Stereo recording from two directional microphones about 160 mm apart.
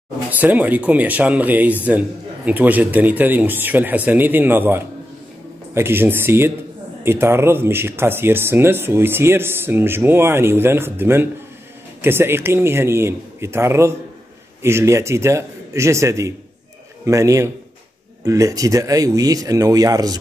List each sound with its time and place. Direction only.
0.3 s speech: 10° right (ahead or behind)